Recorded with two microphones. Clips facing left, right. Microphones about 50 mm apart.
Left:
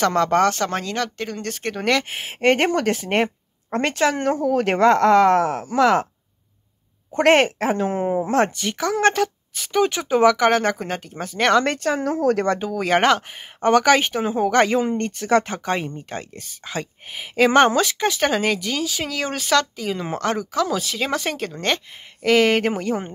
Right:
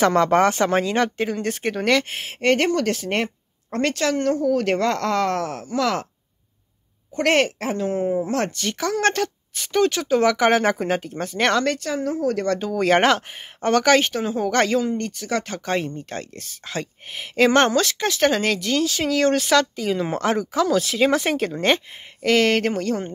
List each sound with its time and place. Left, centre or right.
0.0 s speech: centre
1.8 s speech: centre
2.4 s a woman's voice: left
7.2 s speech: left
8.5 s speech: centre
9.8 s speech: centre
10.2 s speech: centre
11.6 s speech: left
12.5 s speech: centre
13.7 s speech: centre
14.8 s speech: left
15.6 s speech: centre
22.2 s speech: centre